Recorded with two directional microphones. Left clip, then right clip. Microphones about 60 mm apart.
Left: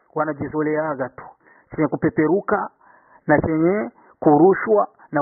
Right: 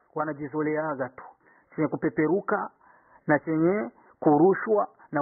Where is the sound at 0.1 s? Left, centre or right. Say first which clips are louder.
Left 7 dB; left.